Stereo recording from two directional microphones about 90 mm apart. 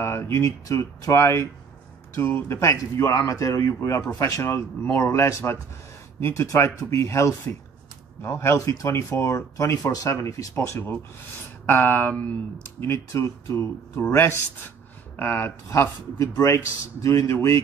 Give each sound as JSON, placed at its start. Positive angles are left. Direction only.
{"t": 0.0, "sound": "speech", "side_deg": 30}
{"t": 13.1, "sound": "speech", "side_deg": 35}